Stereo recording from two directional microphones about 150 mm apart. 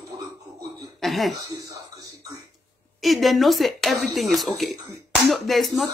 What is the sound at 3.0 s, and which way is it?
Speech, centre (ahead or behind).